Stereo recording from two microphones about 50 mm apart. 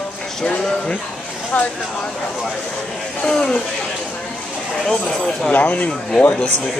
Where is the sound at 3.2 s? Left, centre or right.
Centre.